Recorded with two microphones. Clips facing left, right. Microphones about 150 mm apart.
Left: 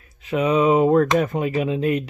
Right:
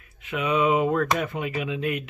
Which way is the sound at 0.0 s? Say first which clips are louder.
Left 7 dB; 35° left (ahead or behind).